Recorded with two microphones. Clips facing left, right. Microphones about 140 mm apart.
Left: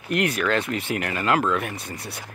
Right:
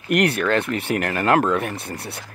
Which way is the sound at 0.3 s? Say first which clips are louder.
Right 3 dB; 30° right (ahead or behind).